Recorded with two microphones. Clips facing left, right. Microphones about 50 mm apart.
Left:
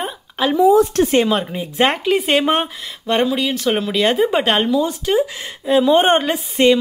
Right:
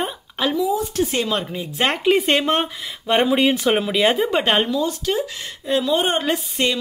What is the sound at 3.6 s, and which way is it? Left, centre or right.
Speech, centre.